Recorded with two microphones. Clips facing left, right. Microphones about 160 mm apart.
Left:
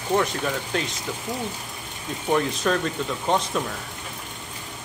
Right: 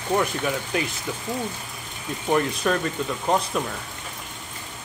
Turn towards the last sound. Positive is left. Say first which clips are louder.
# even
turn(degrees=-5)  # may be behind; listen again after turning